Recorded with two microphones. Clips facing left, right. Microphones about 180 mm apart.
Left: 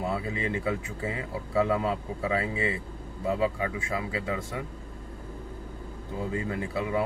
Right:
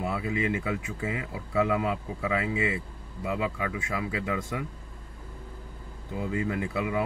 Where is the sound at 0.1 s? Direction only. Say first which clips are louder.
Right 1 dB; 30° left (ahead or behind).